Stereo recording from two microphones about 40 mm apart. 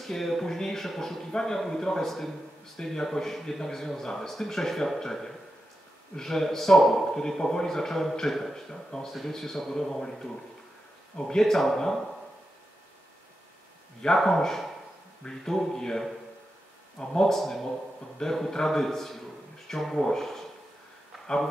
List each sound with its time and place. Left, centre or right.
0.0 s a man's voice: centre
14.0 s a man's voice: centre